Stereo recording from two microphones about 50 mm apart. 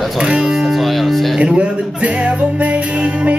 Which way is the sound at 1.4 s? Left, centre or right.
Right.